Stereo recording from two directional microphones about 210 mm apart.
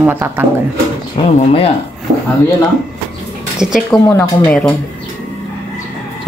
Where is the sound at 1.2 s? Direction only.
30° left (ahead or behind).